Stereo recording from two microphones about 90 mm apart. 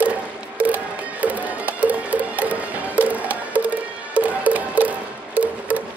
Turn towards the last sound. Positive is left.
turn(degrees=-15)  # may be behind; listen again after turning